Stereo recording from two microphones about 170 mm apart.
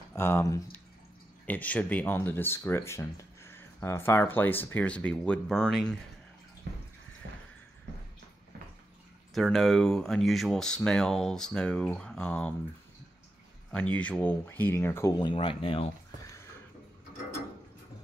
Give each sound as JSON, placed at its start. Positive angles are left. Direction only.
{"t": 0.1, "sound": "speech", "side_deg": 15}
{"t": 9.3, "sound": "speech", "side_deg": 0}
{"t": 13.9, "sound": "speech", "side_deg": 5}
{"t": 15.1, "sound": "speech", "side_deg": 30}